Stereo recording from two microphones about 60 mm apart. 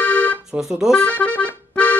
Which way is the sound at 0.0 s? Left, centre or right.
Left.